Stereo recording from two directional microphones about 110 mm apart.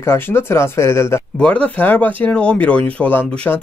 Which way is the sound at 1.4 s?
10° left (ahead or behind).